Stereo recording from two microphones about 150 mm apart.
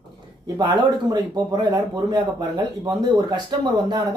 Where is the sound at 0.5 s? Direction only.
30° right (ahead or behind).